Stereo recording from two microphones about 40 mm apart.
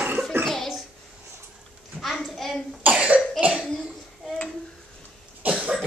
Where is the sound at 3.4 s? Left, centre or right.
Right.